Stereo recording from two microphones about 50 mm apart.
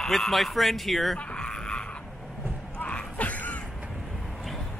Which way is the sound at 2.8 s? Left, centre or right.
Left.